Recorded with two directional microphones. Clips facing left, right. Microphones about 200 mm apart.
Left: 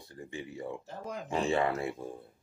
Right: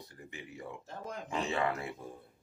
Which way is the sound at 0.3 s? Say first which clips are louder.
Left 7 dB; 30° left (ahead or behind).